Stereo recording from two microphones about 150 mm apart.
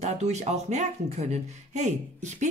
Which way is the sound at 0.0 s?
50° right (ahead or behind).